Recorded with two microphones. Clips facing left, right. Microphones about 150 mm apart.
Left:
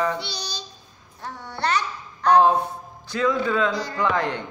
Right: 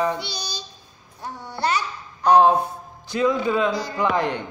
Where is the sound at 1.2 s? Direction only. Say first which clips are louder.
Right 1 dB; 10° right (ahead or behind).